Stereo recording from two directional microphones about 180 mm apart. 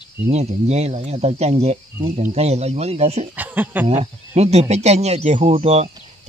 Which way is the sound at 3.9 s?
35° right (ahead or behind).